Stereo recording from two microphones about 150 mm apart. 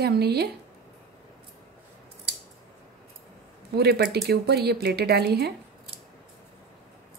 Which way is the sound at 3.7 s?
90° right.